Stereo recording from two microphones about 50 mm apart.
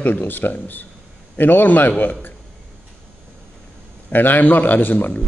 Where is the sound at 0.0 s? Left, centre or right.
Left.